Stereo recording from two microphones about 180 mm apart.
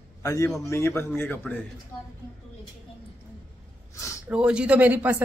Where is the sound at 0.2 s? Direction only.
15° left (ahead or behind).